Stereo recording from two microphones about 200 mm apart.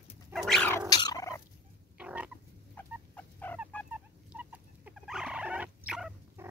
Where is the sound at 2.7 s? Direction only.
10° left (ahead or behind).